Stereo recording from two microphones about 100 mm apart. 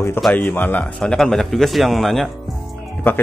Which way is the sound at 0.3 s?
15° left (ahead or behind).